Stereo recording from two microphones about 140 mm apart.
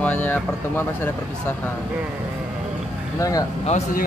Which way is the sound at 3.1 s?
25° left (ahead or behind).